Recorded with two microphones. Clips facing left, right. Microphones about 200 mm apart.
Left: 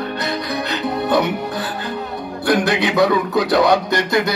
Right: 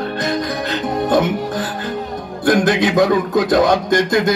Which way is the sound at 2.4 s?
45° right (ahead or behind).